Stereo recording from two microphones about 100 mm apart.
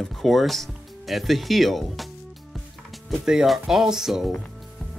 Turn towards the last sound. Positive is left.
turn(degrees=0)  # may be behind; listen again after turning